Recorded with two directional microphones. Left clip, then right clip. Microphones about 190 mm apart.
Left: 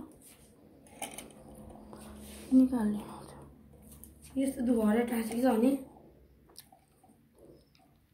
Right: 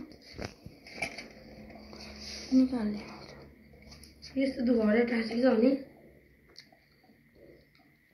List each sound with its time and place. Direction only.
2.5 s a woman's voice: 15° left (ahead or behind)